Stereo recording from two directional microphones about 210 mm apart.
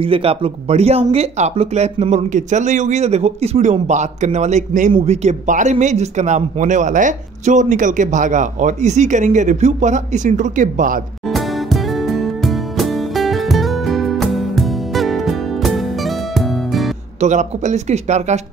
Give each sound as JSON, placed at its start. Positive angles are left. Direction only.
{"t": 0.0, "sound": "speech", "side_deg": -25}
{"t": 11.2, "sound": "music", "side_deg": 0}
{"t": 17.2, "sound": "speech", "side_deg": -35}